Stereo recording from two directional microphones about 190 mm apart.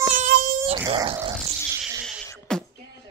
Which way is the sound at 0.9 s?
25° right (ahead or behind).